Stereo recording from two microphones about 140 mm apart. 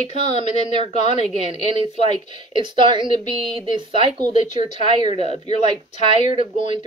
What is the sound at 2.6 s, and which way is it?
Speech, 35° right (ahead or behind).